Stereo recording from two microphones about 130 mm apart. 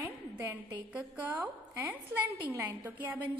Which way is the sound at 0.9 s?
15° right (ahead or behind).